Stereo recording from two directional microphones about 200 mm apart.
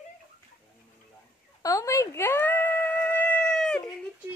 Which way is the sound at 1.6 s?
15° left (ahead or behind).